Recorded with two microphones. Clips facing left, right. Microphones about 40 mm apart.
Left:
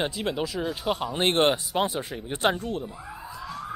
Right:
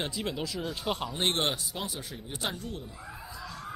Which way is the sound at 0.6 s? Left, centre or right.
Centre.